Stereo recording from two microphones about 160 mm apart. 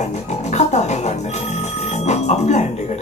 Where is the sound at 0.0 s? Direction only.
45° left (ahead or behind).